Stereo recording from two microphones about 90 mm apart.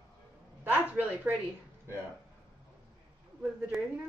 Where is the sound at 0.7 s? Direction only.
15° right (ahead or behind).